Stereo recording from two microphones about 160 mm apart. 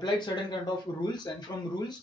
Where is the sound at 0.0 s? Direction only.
30° left (ahead or behind).